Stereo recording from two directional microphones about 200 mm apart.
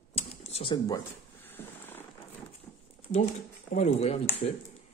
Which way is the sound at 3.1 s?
35° left (ahead or behind).